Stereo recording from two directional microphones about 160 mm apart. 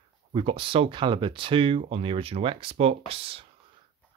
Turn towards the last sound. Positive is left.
turn(degrees=-35)  # may be behind; listen again after turning